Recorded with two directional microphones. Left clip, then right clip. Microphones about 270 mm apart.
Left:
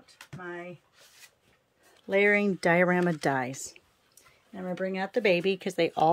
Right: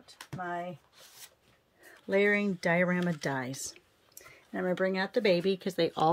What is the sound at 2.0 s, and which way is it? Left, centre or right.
Speech, centre.